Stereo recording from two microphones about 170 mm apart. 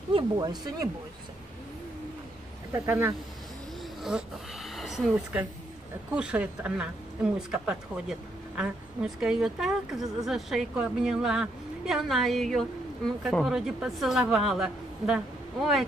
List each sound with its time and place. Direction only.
0.1 s speech: 25° right (ahead or behind)
2.7 s speech: 15° right (ahead or behind)
4.0 s speech: centre (ahead or behind)